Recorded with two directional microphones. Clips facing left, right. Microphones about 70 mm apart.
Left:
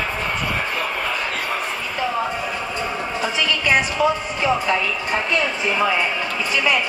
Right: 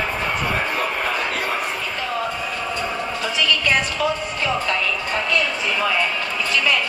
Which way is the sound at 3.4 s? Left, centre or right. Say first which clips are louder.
Even; left.